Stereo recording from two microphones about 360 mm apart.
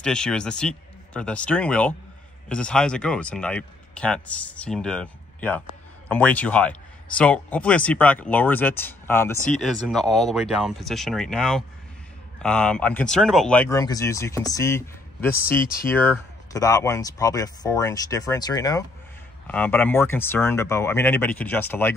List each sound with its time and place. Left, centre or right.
0.0 s speech: centre
15.6 s speech: left
16.0 s speech: centre